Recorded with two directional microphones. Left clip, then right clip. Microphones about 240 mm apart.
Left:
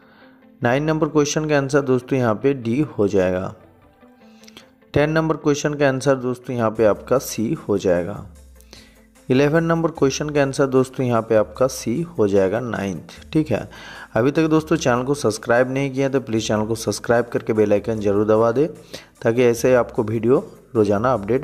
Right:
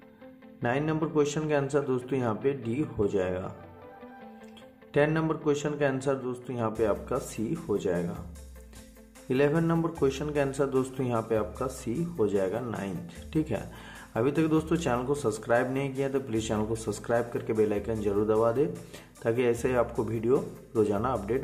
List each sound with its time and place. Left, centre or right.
0.6 s a man's voice: left
4.9 s speech: left
9.3 s a man's voice: left